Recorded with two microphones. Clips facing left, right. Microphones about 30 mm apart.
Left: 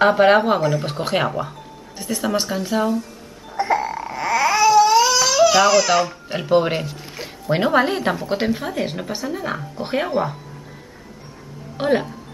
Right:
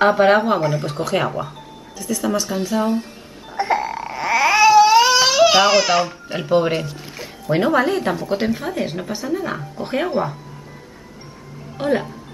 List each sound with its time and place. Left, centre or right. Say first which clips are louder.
0.0 s speech: even; centre
0.6 s speech: even; centre
1.2 s speech: even; centre
2.0 s speech: right 1 dB; left
2.5 s speech: right 1 dB; centre
3.5 s babbling: even; centre
5.9 s speech: even; centre
6.2 s speech: even; centre
7.2 s speech: right 1 dB; centre
11.8 s speech: left 1 dB; centre